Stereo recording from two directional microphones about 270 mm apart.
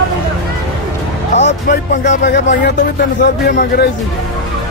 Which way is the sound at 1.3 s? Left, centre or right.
Left.